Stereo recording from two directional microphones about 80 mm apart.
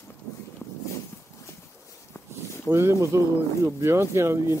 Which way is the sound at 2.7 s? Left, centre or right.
Right.